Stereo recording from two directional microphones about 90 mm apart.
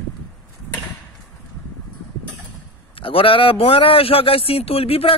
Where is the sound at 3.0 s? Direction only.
85° left.